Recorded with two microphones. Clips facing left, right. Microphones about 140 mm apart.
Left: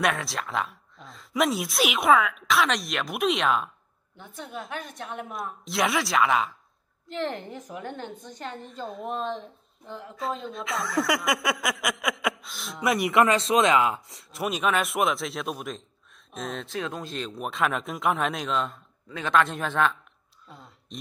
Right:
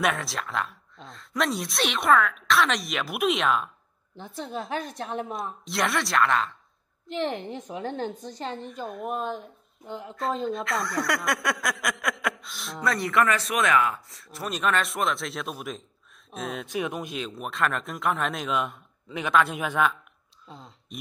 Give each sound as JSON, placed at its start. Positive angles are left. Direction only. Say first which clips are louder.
{"t": 0.0, "sound": "speech", "louder": "even", "side_deg": 0}
{"t": 4.2, "sound": "a woman's voice", "louder": "right 4 dB", "side_deg": -35}
{"t": 5.7, "sound": "speech", "louder": "left 2 dB", "side_deg": 0}
{"t": 7.1, "sound": "a woman's voice", "louder": "right 2 dB", "side_deg": -20}
{"t": 8.8, "sound": "speech", "louder": "even", "side_deg": 0}
{"t": 10.1, "sound": "speech", "louder": "right 4 dB", "side_deg": 0}
{"t": 12.8, "sound": "speech", "louder": "left 2 dB", "side_deg": 20}
{"t": 14.4, "sound": "speech", "louder": "left 1 dB", "side_deg": 0}
{"t": 16.7, "sound": "speech", "louder": "right 5 dB", "side_deg": -20}
{"t": 17.1, "sound": "speech", "louder": "left 1 dB", "side_deg": 0}
{"t": 19.0, "sound": "speech", "louder": "right 1 dB", "side_deg": -20}
{"t": 19.3, "sound": "speech", "louder": "even", "side_deg": -5}
{"t": 20.4, "sound": "speech", "louder": "right 3 dB", "side_deg": -25}